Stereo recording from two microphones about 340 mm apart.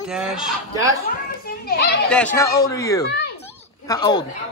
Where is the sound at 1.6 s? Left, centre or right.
Left.